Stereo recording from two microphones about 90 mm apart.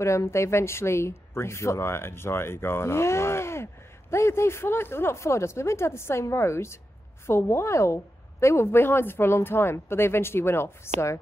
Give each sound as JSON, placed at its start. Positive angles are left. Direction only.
{"t": 0.0, "sound": "a woman's voice", "side_deg": 35}